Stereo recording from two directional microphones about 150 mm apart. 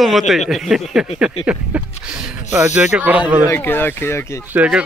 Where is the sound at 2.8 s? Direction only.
10° right (ahead or behind).